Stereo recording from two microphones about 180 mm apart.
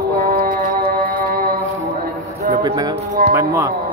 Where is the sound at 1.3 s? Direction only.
55° right (ahead or behind).